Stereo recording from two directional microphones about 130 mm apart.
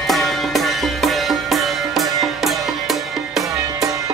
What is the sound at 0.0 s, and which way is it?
Music, centre (ahead or behind).